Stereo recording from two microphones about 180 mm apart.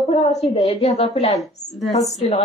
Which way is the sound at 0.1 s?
40° left (ahead or behind).